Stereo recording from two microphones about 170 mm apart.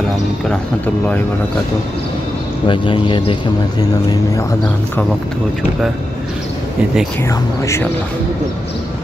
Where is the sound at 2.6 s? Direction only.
30° left (ahead or behind).